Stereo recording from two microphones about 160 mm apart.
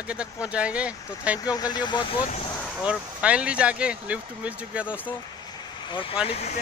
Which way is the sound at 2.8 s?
5° right (ahead or behind).